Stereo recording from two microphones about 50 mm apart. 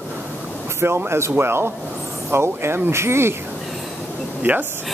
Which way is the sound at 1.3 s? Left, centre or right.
Right.